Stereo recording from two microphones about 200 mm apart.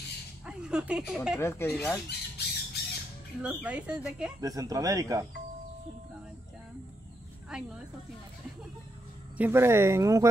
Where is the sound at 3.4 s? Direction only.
5° right (ahead or behind).